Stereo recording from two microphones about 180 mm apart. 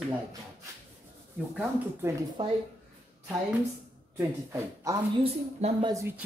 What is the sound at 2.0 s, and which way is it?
Speech, 15° right (ahead or behind).